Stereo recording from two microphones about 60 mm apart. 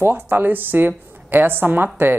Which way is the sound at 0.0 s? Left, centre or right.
Right.